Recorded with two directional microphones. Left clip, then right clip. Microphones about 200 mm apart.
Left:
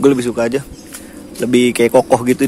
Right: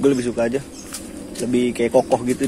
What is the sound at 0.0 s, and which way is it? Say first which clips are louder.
Speech: left 5 dB; 25° left (ahead or behind).